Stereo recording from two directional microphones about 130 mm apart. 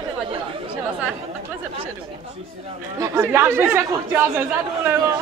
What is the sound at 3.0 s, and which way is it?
Speech, 20° right (ahead or behind).